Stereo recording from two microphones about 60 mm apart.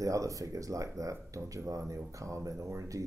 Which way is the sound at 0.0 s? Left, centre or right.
Right.